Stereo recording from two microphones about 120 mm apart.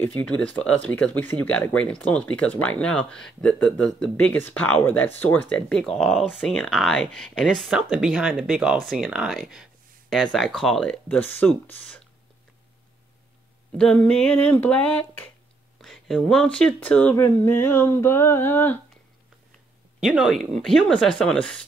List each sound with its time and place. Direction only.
0.0 s speech: 10° left (ahead or behind)
13.7 s speech: 5° left (ahead or behind)
17.1 s a sound: 15° left (ahead or behind)
20.0 s speech: 5° right (ahead or behind)